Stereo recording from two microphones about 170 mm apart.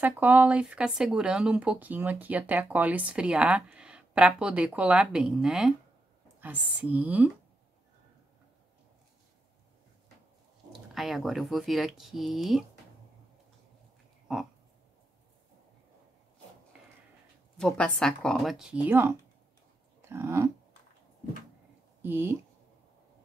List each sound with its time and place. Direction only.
0.0 s speech: 10° right (ahead or behind)
10.7 s speech: centre (ahead or behind)
14.2 s a sound: centre (ahead or behind)
17.6 s speech: 5° left (ahead or behind); by 20.5 s 15° right (ahead or behind)
22.0 s speech: 15° right (ahead or behind)